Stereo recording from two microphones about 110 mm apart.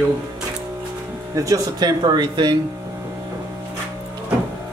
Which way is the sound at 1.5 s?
35° right (ahead or behind).